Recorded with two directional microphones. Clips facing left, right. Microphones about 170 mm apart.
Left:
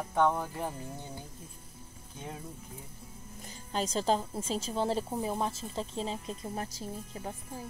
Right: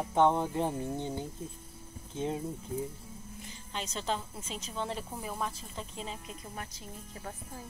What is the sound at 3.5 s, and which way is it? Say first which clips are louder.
A woman's voice: left 7 dB; 40° left (ahead or behind).